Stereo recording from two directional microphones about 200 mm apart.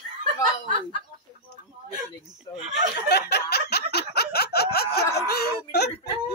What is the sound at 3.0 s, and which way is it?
Snicker, 55° left (ahead or behind).